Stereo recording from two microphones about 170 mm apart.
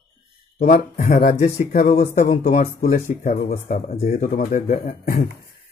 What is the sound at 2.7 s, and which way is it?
Speech, 60° left (ahead or behind).